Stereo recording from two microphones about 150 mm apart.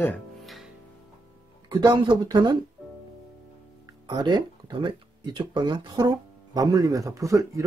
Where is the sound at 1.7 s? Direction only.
30° right (ahead or behind).